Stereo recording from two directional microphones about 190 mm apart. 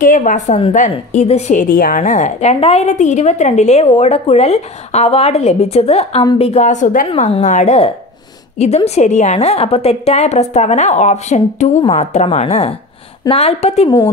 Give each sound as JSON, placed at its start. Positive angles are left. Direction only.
{"t": 0.0, "sound": "a woman's voice", "side_deg": 45}
{"t": 7.1, "sound": "a woman's voice", "side_deg": 30}